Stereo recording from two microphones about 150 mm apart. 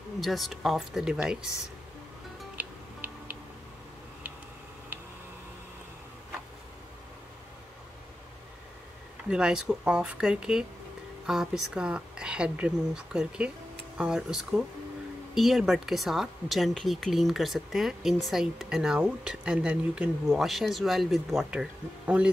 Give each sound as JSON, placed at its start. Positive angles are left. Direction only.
{"t": 0.2, "sound": "speech", "side_deg": 0}
{"t": 2.5, "sound": "music", "side_deg": -10}
{"t": 9.3, "sound": "speech", "side_deg": -5}